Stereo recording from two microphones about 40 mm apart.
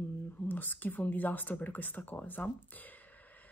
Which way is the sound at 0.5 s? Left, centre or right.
Left.